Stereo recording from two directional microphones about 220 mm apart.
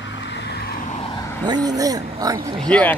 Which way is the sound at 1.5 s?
15° right (ahead or behind).